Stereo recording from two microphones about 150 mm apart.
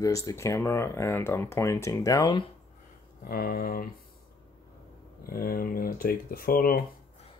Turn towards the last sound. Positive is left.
turn(degrees=75)  # may be behind; listen again after turning